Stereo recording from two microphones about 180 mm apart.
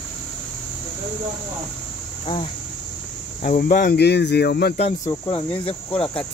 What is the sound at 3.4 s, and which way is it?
Speech, 45° left (ahead or behind).